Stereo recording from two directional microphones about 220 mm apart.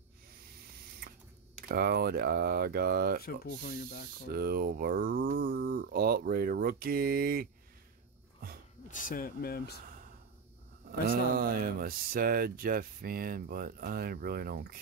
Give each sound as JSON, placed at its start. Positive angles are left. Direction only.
{"t": 1.7, "sound": "speech", "side_deg": -45}
{"t": 3.2, "sound": "speech", "side_deg": 45}
{"t": 4.3, "sound": "speech", "side_deg": -45}
{"t": 8.8, "sound": "speech", "side_deg": 40}
{"t": 10.9, "sound": "speech", "side_deg": -40}